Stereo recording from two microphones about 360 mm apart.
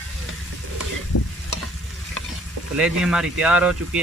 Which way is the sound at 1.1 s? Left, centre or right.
Left.